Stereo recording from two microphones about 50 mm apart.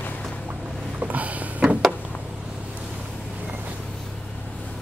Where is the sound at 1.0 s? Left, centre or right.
Right.